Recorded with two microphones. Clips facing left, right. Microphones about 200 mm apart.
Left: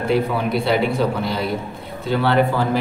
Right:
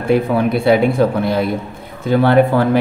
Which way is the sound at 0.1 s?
55° right (ahead or behind).